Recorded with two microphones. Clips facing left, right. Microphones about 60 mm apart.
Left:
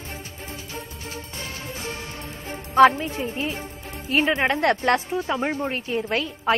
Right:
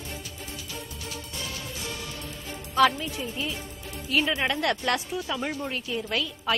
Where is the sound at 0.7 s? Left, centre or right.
Left.